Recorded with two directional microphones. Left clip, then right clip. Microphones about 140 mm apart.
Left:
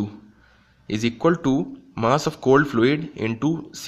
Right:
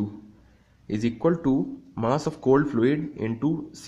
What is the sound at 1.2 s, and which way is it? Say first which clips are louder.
Speech: left 3 dB; 10° left (ahead or behind).